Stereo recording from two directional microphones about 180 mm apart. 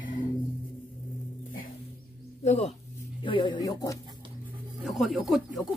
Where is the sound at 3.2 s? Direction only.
25° left (ahead or behind).